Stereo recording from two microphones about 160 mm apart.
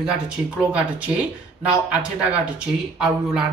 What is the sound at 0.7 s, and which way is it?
Speech, 10° right (ahead or behind).